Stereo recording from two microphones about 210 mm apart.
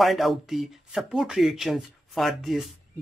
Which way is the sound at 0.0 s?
Centre (ahead or behind).